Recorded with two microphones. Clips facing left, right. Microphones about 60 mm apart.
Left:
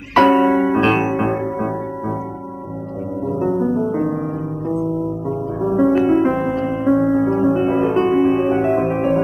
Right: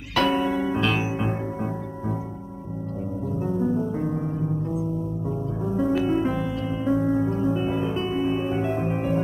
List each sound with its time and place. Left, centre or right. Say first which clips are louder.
0.1 s music: left 10 dB; left
3.3 s music: left 7 dB; left
5.6 s music: left 9 dB; left